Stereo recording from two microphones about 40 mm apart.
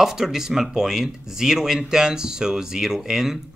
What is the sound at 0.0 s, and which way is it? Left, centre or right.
Speech, centre.